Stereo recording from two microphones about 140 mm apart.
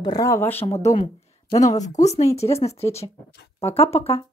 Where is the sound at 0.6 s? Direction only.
50° left (ahead or behind).